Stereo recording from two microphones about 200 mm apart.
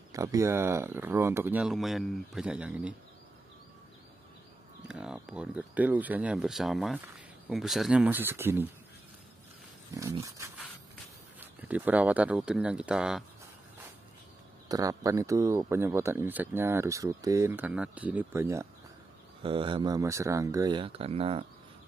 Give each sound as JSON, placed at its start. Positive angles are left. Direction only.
{"t": 0.1, "sound": "speech", "side_deg": -15}
{"t": 4.8, "sound": "speech", "side_deg": -5}
{"t": 10.2, "sound": "speech", "side_deg": -15}
{"t": 14.7, "sound": "speech", "side_deg": -15}
{"t": 19.4, "sound": "speech", "side_deg": -25}